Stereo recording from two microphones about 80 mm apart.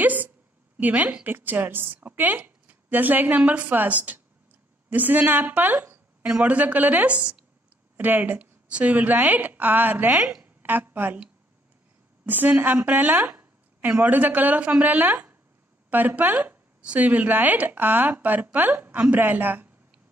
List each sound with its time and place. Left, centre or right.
0.0 s a woman's voice: right
6.2 s a woman's voice: centre
10.4 s a sound: right
12.3 s a woman's voice: right